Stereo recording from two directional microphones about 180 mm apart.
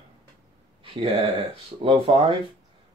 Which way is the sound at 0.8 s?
30° right (ahead or behind).